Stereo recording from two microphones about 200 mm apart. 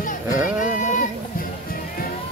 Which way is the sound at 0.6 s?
40° left (ahead or behind).